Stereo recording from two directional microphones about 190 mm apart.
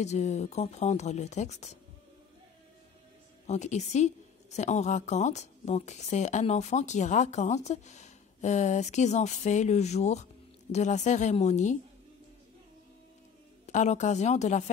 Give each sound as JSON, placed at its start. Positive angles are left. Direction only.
{"t": 0.0, "sound": "a woman's voice", "side_deg": 35}
{"t": 3.4, "sound": "a woman's voice", "side_deg": 35}
{"t": 13.7, "sound": "a woman's voice", "side_deg": 40}